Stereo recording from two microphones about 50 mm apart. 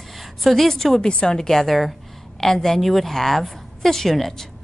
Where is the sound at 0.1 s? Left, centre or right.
Centre.